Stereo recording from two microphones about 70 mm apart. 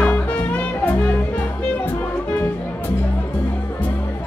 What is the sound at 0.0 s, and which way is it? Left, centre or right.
Music, left.